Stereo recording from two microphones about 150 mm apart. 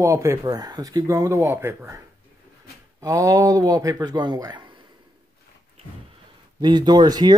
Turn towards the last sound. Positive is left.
turn(degrees=-25)  # may be behind; listen again after turning